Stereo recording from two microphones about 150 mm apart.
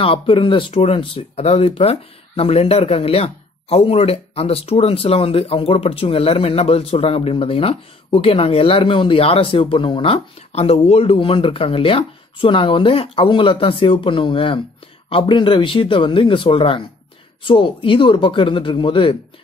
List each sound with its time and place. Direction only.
0.0 s speech: 35° left (ahead or behind)